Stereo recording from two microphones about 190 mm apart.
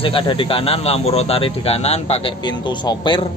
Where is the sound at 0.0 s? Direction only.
25° left (ahead or behind).